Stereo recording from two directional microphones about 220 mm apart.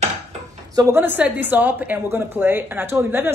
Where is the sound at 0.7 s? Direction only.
10° right (ahead or behind).